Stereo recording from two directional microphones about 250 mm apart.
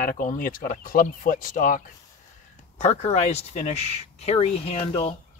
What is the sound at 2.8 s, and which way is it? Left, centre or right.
Speech, left.